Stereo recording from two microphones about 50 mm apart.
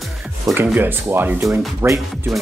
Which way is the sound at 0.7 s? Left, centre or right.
Right.